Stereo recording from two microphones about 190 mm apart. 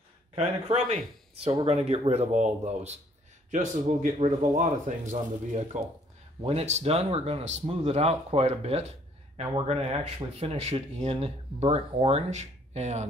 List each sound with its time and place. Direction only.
0.4 s speech: 35° right (ahead or behind)